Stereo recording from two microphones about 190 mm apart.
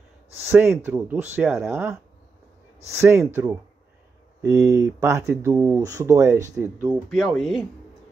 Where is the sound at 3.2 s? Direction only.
10° right (ahead or behind).